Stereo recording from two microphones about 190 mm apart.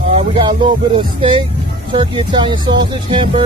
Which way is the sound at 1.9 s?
25° right (ahead or behind).